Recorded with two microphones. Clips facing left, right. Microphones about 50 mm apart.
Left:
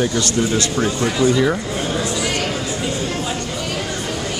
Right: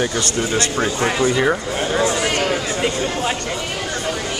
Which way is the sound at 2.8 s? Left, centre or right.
Right.